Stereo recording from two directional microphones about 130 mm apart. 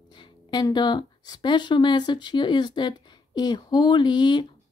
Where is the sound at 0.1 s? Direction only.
35° left (ahead or behind).